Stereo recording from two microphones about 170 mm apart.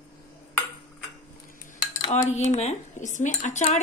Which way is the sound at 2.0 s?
45° left (ahead or behind).